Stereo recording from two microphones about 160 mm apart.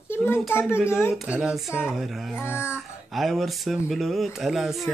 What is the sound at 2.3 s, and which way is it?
Speech, 15° left (ahead or behind).